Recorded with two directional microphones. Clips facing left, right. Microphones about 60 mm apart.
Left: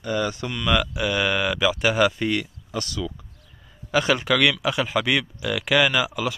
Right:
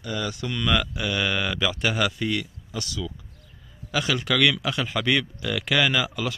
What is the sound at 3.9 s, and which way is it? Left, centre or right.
Speech, left.